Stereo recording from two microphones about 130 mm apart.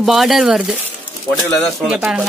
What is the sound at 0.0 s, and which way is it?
Speech, centre (ahead or behind).